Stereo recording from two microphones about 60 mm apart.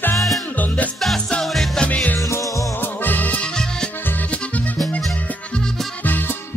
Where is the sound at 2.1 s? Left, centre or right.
Left.